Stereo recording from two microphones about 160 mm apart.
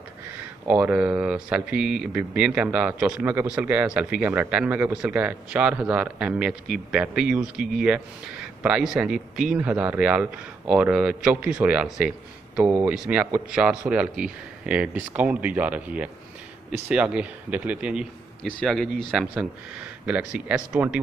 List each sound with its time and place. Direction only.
0.7 s speech: 10° right (ahead or behind)